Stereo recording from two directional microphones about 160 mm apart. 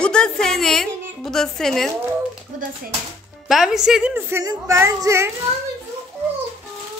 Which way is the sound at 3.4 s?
Centre (ahead or behind).